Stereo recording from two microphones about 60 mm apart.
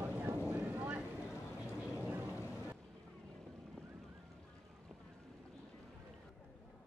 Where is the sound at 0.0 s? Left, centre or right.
Right.